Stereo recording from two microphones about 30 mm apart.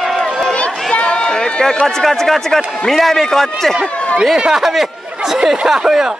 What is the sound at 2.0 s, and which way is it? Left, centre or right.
Speech, centre.